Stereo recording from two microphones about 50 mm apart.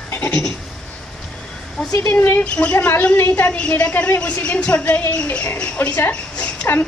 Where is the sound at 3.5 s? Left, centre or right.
Left.